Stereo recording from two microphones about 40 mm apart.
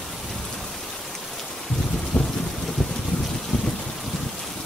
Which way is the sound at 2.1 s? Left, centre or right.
Left.